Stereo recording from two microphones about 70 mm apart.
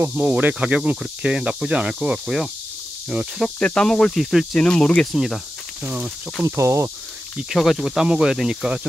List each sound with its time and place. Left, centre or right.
0.1 s speech: right
0.7 s speech: centre
2.2 s speech: centre
3.5 s speech: centre
4.2 s speech: centre
4.5 s speech: centre
5.1 s speech: centre
6.4 s speech: right
7.4 s speech: centre